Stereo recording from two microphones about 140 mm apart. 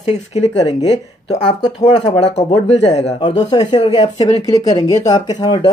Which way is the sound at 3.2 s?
35° left (ahead or behind).